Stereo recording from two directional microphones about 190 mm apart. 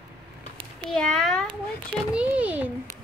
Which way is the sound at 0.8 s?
5° left (ahead or behind).